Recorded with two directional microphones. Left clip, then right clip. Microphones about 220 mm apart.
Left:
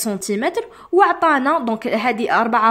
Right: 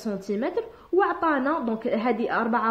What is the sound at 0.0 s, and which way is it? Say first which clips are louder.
A woman's voice: left 7 dB; 35° left (ahead or behind).